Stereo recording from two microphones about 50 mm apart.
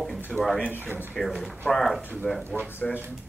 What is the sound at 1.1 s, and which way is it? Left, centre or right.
Speech, centre.